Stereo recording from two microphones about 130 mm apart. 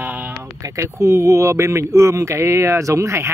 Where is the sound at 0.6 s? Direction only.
25° right (ahead or behind).